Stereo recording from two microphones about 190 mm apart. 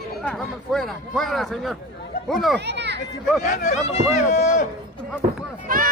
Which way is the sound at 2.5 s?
65° right (ahead or behind).